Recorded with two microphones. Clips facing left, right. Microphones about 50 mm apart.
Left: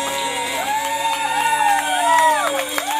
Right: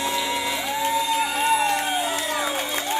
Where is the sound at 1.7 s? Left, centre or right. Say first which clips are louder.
Left 8 dB; left.